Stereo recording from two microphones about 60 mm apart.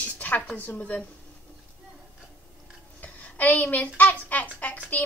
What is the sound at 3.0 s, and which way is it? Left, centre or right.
A woman's voice, left.